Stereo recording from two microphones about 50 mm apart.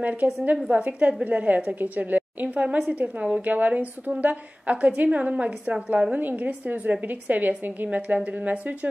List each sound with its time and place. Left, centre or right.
0.0 s a woman's voice: right